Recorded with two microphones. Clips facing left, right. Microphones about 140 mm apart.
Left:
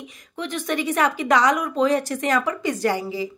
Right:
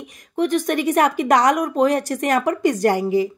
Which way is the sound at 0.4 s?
45° right (ahead or behind).